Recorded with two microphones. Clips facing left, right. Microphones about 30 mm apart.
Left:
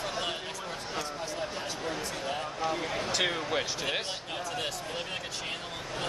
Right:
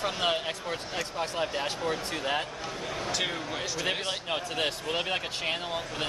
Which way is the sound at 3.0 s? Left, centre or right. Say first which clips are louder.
Right 1 dB; centre.